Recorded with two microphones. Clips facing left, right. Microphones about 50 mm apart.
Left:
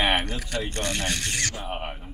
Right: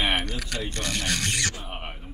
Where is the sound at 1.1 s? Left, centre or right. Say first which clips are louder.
Right 1 dB; right.